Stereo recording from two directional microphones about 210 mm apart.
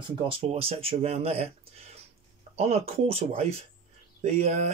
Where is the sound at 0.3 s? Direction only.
30° right (ahead or behind).